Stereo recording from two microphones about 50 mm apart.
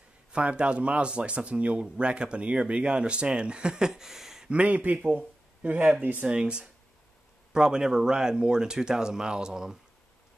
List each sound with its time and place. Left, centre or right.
0.3 s speech: right; by 4.5 s centre
4.5 s speech: right